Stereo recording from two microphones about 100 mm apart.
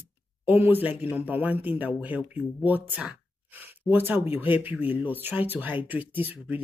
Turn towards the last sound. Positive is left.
turn(degrees=-20)  # may be behind; listen again after turning